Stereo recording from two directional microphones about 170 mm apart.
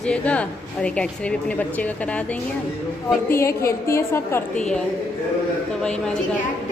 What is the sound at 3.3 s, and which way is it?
A woman's voice, 15° left (ahead or behind).